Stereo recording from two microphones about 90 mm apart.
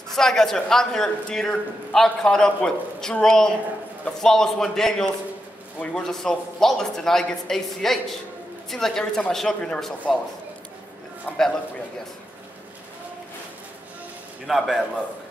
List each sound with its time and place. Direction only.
0.1 s a man's voice: 5° left (ahead or behind)
11.3 s a man's voice: 15° left (ahead or behind)
14.4 s a man's voice: centre (ahead or behind)